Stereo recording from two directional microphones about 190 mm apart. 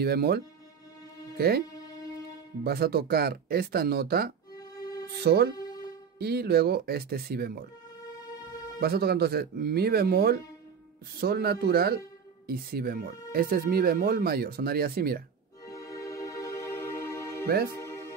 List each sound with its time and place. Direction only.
0.0 s speech: 55° right (ahead or behind)
2.6 s speech: 55° right (ahead or behind)
8.7 s speech: 55° right (ahead or behind)
15.6 s music: 15° left (ahead or behind)